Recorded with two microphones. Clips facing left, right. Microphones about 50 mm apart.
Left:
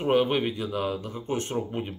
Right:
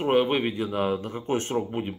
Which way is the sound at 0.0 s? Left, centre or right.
Centre.